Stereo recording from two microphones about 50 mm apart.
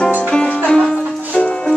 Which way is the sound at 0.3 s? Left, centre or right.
Left.